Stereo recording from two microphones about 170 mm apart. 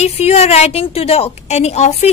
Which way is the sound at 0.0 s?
40° left (ahead or behind).